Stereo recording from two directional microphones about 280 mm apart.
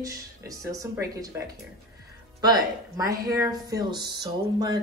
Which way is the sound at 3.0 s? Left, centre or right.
Centre.